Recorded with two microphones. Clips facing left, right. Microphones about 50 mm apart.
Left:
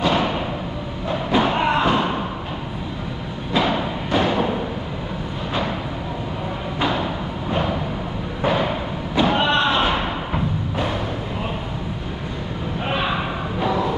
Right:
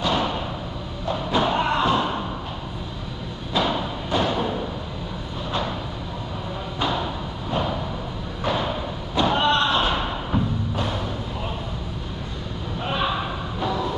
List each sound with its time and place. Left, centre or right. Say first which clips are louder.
0.0 s thump: left 3 dB; left
3.6 s music: left 3 dB; left
6.8 s a sound: left 3 dB; left
8.4 s slam: left 4 dB; left
12.8 s slam: left 2 dB; left